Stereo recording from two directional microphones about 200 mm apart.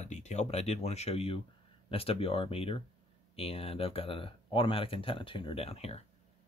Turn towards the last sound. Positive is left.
turn(degrees=30)  # may be behind; listen again after turning